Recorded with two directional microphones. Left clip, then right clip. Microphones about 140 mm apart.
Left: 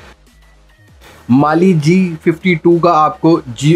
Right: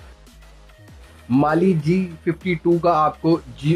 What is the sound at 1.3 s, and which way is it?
Speech, 25° left (ahead or behind).